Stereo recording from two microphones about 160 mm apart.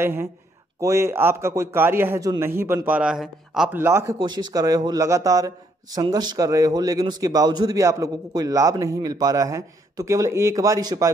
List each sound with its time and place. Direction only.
0.0 s a man's voice: 15° right (ahead or behind)
3.7 s a man's voice: 15° right (ahead or behind)